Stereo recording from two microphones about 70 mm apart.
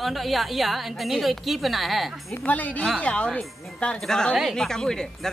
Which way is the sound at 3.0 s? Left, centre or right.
Centre.